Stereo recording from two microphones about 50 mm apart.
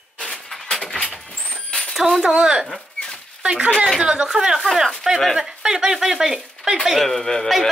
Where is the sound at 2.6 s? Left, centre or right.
Centre.